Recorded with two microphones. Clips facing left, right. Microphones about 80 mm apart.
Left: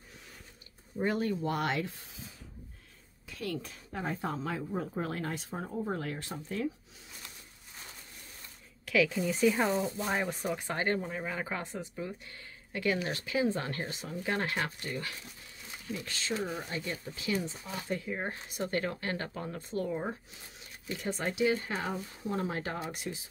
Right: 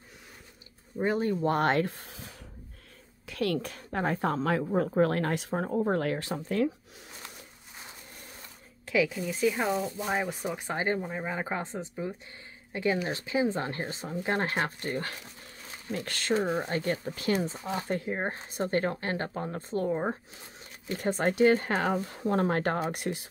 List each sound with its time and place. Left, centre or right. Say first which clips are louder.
1.0 s speech: right 3 dB; right
1.4 s speech: right 6 dB; right
3.3 s a woman's voice: right 8 dB; right
8.8 s a sound: right 1 dB; right
9.1 s speech: left 1 dB; centre; by 15.1 s right
15.9 s speech: right 7 dB; right
20.9 s speech: right 7 dB; right